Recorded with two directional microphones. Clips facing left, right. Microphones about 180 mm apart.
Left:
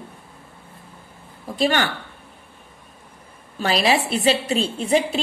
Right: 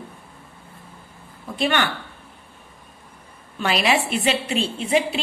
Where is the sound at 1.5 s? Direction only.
40° left (ahead or behind).